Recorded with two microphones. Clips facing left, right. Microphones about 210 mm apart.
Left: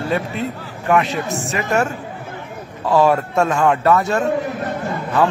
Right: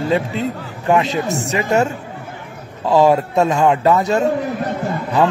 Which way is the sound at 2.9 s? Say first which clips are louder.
Right 2 dB; 20° right (ahead or behind).